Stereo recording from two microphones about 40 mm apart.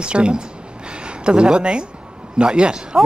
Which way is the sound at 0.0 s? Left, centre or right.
Right.